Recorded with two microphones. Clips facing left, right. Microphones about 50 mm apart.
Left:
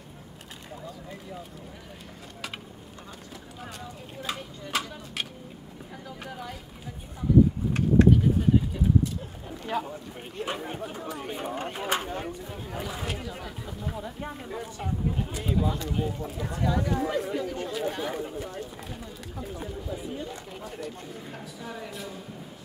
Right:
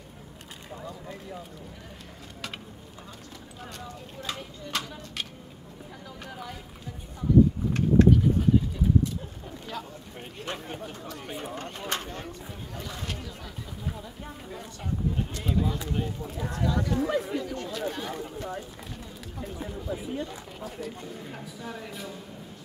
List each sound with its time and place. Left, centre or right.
0.7 s speech: centre
3.6 s speech: centre
7.7 s speech: centre
11.6 s speech: centre
14.6 s speech: centre
20.5 s speech: centre